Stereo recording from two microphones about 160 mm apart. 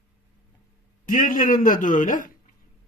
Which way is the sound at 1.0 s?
55° left (ahead or behind).